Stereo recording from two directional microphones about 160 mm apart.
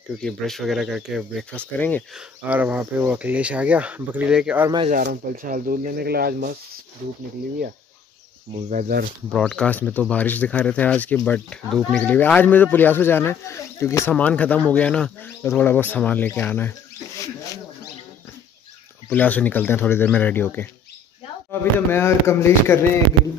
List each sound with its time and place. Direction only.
0.2 s speech: centre (ahead or behind)
1.5 s speech: 10° left (ahead or behind)
2.1 s speech: 10° right (ahead or behind)
5.0 s speech: 65° right (ahead or behind)
8.5 s speech: 55° right (ahead or behind)
9.3 s speech: 5° left (ahead or behind)
19.0 s speech: 10° left (ahead or behind)